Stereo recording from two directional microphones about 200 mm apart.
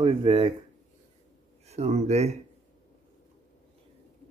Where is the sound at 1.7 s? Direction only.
35° right (ahead or behind).